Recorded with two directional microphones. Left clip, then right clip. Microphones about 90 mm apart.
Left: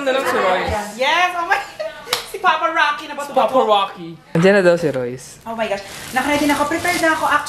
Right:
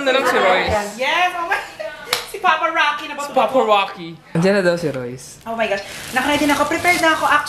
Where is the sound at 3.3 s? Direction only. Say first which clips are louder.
Even; 15° left (ahead or behind).